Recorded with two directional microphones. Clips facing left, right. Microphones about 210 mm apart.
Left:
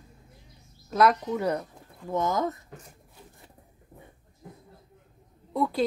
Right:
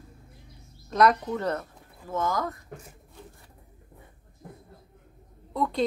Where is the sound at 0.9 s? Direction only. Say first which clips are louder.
Even; centre (ahead or behind); by 2.5 s 20° left (ahead or behind).